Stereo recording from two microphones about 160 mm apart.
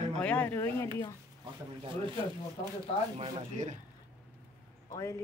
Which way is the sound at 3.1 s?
40° right (ahead or behind).